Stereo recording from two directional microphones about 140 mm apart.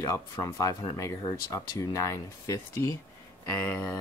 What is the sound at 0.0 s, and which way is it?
Speech, 25° left (ahead or behind).